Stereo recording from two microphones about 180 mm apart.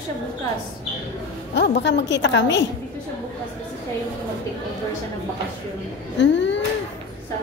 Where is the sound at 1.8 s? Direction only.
80° left.